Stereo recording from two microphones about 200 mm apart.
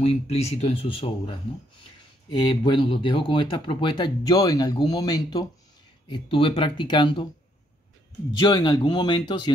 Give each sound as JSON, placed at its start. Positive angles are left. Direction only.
{"t": 0.0, "sound": "speech", "side_deg": 30}
{"t": 8.4, "sound": "speech", "side_deg": 20}